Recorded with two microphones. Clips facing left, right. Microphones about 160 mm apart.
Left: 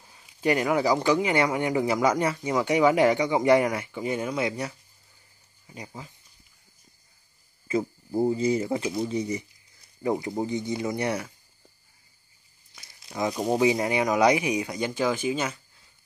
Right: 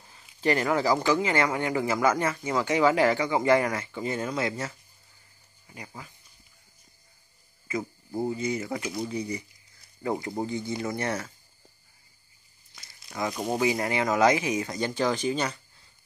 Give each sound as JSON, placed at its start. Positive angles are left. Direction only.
{"t": 0.1, "sound": "a sound", "side_deg": 15}
{"t": 1.0, "sound": "speech", "side_deg": 15}
{"t": 5.8, "sound": "speech", "side_deg": 20}
{"t": 8.2, "sound": "speech", "side_deg": 30}
{"t": 12.7, "sound": "a sound", "side_deg": 15}
{"t": 13.6, "sound": "speech", "side_deg": 20}